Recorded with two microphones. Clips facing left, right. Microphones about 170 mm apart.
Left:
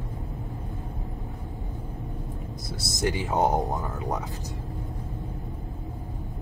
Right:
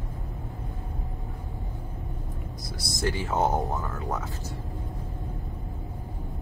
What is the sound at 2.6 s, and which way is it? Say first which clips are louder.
Speech: left 2 dB; 15° left (ahead or behind).